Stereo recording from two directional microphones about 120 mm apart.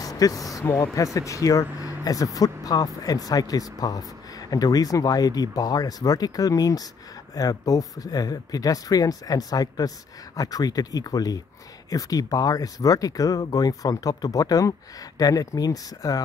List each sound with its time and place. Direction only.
0.0 s speech: 30° left (ahead or behind)